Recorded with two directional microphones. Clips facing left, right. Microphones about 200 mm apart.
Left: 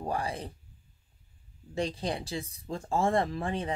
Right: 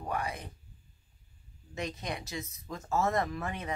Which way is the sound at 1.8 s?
30° left (ahead or behind).